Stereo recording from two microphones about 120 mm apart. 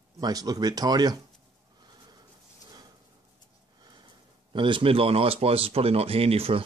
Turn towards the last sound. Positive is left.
turn(degrees=-55)  # may be behind; listen again after turning